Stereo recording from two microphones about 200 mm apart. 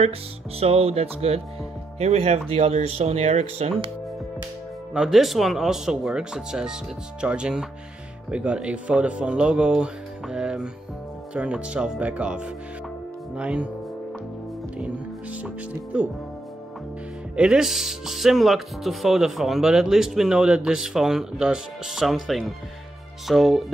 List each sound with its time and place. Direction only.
0.6 s speech: 30° right (ahead or behind)
4.9 s speech: centre (ahead or behind)
15.4 s speech: 5° right (ahead or behind)
17.4 s speech: 5° right (ahead or behind)